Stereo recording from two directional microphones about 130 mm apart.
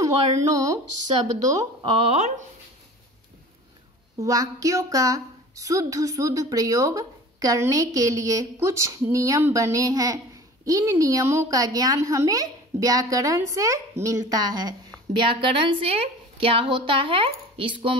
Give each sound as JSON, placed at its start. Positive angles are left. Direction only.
{"t": 0.5, "sound": "speech", "side_deg": -25}
{"t": 4.2, "sound": "speech", "side_deg": -25}